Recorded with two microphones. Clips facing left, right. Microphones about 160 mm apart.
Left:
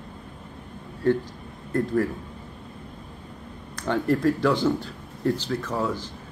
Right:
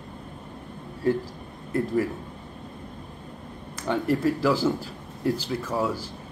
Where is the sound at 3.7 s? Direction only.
5° right (ahead or behind).